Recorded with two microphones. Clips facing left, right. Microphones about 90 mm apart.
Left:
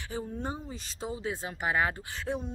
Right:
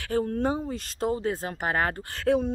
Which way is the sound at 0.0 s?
70° right (ahead or behind).